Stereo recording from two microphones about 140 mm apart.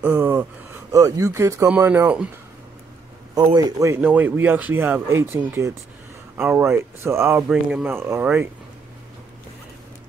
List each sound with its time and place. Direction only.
0.0 s speech: 10° right (ahead or behind)
0.9 s speech: 25° right (ahead or behind)
3.3 s speech: 25° right (ahead or behind)
4.0 s speech: 10° right (ahead or behind)